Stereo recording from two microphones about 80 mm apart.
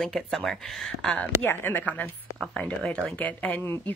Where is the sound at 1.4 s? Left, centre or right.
Left.